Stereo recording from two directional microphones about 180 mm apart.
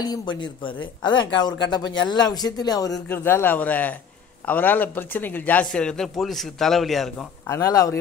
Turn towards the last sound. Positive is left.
turn(degrees=20)  # may be behind; listen again after turning